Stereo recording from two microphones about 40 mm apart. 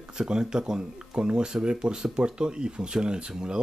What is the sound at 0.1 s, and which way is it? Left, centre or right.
Speech, centre.